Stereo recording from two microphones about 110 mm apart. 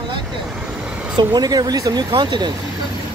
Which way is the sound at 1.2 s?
35° right (ahead or behind).